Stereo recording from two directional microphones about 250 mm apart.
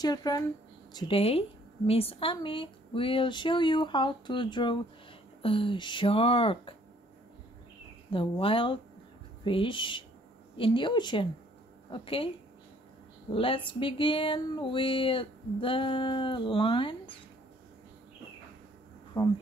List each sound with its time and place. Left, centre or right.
0.0 s speech: centre
8.1 s speech: left
13.3 s speech: left
19.1 s speech: centre